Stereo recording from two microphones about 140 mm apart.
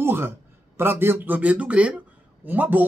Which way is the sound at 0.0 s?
15° right (ahead or behind).